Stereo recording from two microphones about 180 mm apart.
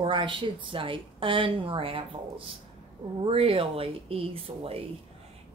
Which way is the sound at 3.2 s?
30° right (ahead or behind).